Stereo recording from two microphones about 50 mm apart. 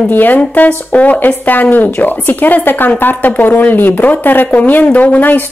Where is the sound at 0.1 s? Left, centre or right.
Left.